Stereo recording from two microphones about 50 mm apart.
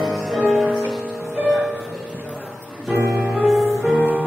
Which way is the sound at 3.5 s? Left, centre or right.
Centre.